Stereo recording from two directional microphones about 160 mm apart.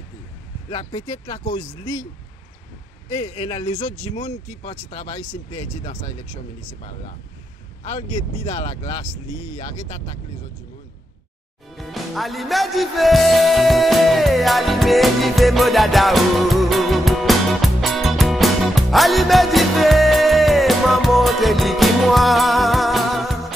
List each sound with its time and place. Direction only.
1.1 s speech: 25° left (ahead or behind)
3.2 s speech: 35° left (ahead or behind)
7.8 s speech: 40° left (ahead or behind)
11.7 s music: centre (ahead or behind)